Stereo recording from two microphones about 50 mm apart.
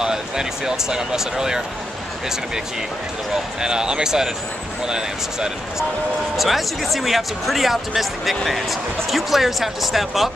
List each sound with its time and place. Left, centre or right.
0.0 s speech: centre
3.6 s speech: centre
6.3 s speech: centre